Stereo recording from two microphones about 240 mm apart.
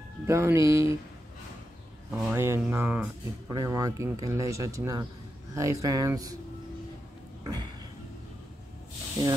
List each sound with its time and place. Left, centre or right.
0.3 s speech: centre
2.0 s speech: centre
7.4 s a sound: centre